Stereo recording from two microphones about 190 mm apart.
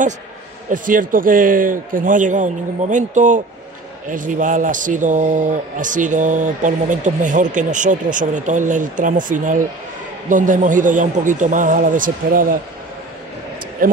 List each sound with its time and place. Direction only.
0.7 s speech: 45° right (ahead or behind)